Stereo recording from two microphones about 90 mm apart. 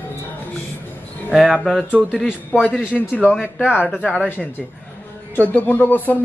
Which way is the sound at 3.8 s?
15° left (ahead or behind).